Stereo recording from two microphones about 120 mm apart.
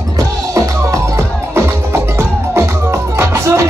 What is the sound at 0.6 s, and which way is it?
Music, 25° right (ahead or behind).